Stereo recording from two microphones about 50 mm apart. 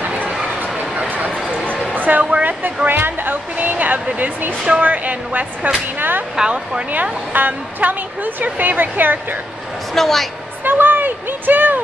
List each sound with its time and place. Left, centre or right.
0.6 s a sound: right
2.9 s a woman's voice: right
3.5 s a woman's voice: right
5.9 s speech: right
6.3 s speech: centre
6.9 s a woman's voice: right
9.9 s a woman's voice: centre
10.6 s speech: right